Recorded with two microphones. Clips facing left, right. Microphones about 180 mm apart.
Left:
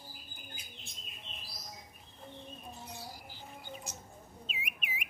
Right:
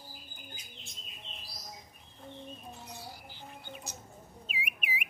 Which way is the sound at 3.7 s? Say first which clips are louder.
Left 1 dB; 70° right (ahead or behind).